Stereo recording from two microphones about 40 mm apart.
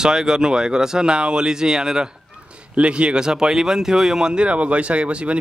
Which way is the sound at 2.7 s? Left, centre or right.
Right.